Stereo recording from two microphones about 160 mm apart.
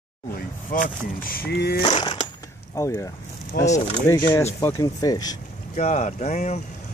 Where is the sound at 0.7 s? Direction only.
60° left (ahead or behind); by 1.8 s 85° left.